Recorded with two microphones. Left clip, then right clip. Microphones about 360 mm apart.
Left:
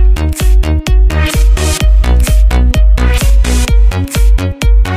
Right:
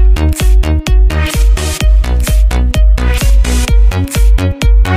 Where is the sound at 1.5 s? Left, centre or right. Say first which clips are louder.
Left 2 dB; left.